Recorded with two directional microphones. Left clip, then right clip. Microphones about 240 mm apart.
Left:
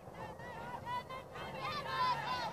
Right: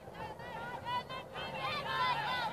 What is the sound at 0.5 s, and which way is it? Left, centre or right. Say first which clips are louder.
Vehicle: right 3 dB; right.